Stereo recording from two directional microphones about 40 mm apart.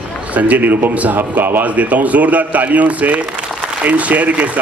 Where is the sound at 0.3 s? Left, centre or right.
Right.